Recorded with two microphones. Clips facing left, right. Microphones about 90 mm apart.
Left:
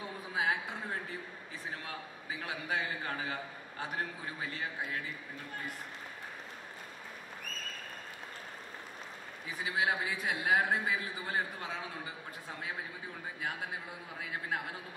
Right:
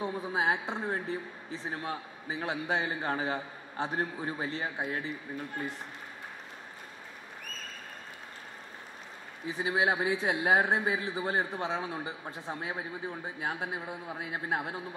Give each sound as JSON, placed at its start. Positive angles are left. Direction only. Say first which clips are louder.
{"t": 0.0, "sound": "a man's voice", "louder": "right 5 dB", "side_deg": -30}
{"t": 9.5, "sound": "a man's voice", "louder": "right 5 dB", "side_deg": -25}